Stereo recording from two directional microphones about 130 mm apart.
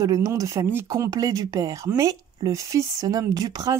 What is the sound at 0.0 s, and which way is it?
Speech, 25° right (ahead or behind).